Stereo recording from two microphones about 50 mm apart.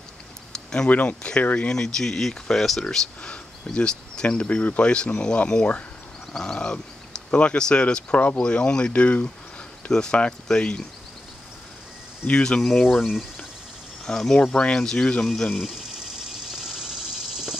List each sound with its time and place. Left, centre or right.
0.8 s speech: left
1.8 s speech: centre
3.2 s speech: centre
12.3 s speech: centre
12.8 s speech: centre
14.0 s speech: centre
15.5 s speech: centre
16.3 s vehicle: centre